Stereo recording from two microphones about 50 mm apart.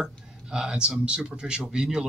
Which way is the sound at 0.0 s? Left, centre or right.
Centre.